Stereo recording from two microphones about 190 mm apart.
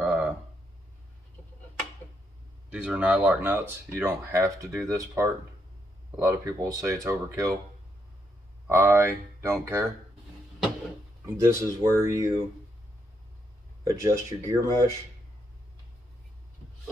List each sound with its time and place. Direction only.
0.0 s a sound: 5° right (ahead or behind)
2.7 s speech: 5° right (ahead or behind)
8.6 s speech: 15° right (ahead or behind)
11.2 s speech: 15° right (ahead or behind)
13.8 s speech: 15° right (ahead or behind)